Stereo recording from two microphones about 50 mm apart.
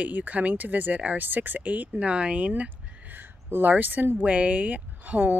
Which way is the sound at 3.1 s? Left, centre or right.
Right.